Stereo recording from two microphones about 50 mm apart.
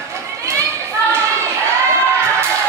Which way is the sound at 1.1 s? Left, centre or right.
Right.